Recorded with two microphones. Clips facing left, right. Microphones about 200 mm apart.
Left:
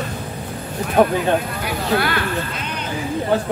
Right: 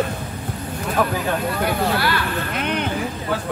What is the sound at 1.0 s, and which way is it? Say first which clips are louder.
Speech: left 7 dB; 25° left (ahead or behind).